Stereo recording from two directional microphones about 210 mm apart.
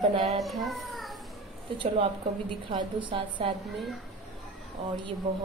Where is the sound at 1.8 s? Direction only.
25° right (ahead or behind).